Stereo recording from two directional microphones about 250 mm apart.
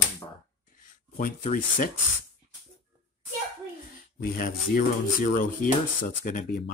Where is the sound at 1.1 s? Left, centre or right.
Left.